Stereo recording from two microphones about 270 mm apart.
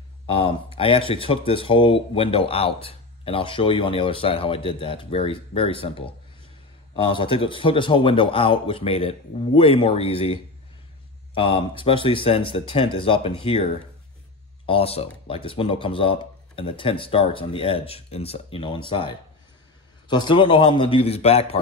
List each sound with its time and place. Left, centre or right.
0.3 s speech: centre